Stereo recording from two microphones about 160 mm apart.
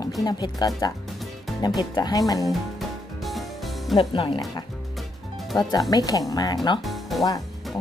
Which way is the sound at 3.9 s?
30° left (ahead or behind).